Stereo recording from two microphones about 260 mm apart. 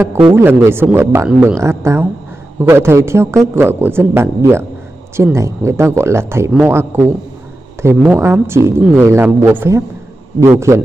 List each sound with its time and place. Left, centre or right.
0.3 s speech: centre